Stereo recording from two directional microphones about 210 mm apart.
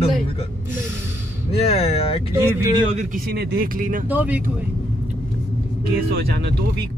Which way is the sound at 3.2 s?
50° right (ahead or behind).